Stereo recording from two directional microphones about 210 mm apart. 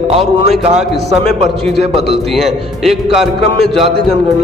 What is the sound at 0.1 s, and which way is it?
A man's voice, 30° right (ahead or behind).